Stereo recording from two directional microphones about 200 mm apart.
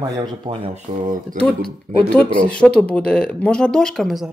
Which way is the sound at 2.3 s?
5° left (ahead or behind).